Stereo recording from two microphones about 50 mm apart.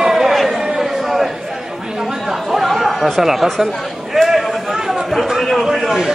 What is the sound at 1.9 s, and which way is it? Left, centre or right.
Chatter, centre.